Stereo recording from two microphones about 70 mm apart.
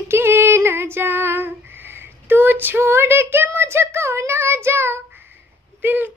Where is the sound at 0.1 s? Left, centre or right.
Right.